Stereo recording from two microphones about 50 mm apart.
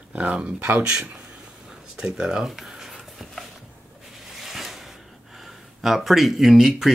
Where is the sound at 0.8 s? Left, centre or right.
Centre.